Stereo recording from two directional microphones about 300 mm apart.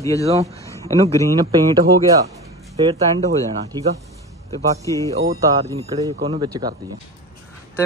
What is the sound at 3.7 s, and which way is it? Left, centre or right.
Speech, centre.